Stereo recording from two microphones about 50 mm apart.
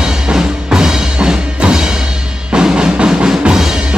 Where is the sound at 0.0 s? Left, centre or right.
Centre.